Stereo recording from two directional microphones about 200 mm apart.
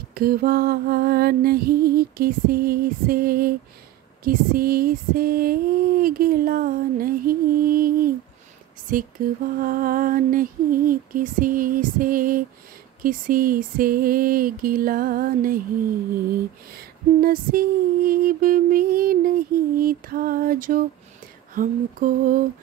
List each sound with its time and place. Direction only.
0.1 s female singing: 45° right (ahead or behind)
9.2 s female singing: 45° right (ahead or behind)
16.7 s female singing: 45° right (ahead or behind)